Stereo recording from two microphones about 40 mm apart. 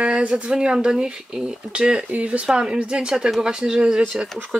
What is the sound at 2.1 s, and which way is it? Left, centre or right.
Speech, right.